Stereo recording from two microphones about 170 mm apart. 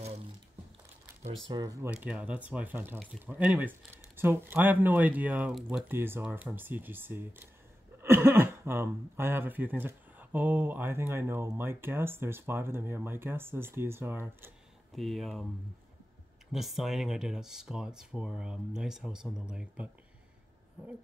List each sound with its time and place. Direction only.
1.5 s speech: 20° right (ahead or behind)
1.9 s speech: 5° right (ahead or behind)
14.9 s speech: centre (ahead or behind)
16.5 s speech: centre (ahead or behind)